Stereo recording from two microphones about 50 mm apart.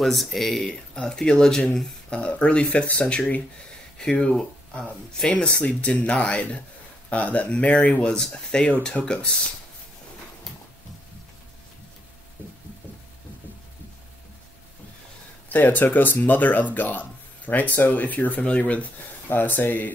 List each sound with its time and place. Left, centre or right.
0.0 s speech: centre
0.7 s speech: centre
15.5 s speech: left
19.2 s speech: left